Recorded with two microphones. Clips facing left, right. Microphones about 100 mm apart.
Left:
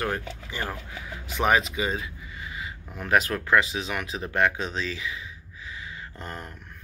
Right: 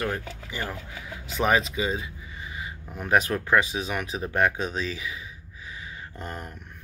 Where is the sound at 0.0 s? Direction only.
20° left (ahead or behind).